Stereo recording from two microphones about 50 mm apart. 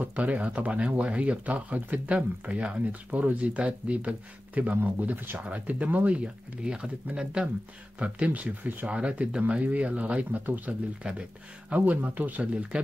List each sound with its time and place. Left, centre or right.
0.0 s speech: right
5.4 s speech: right
8.3 s speech: right
8.8 s speech: right
11.0 s speech: right
12.7 s speech: centre